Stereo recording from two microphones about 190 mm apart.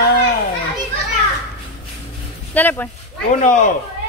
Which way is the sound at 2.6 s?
10° left (ahead or behind).